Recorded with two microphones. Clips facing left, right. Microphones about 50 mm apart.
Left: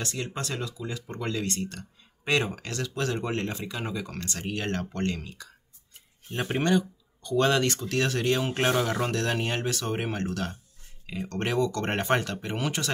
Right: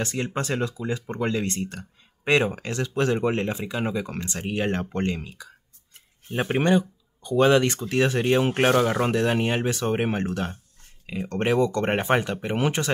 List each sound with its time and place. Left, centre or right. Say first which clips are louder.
0.0 s speech: right 6 dB; right
9.0 s speech: right 5 dB; centre